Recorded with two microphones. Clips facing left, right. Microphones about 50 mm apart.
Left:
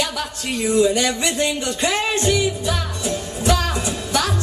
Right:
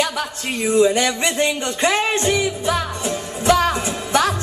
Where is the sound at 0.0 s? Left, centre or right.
Right.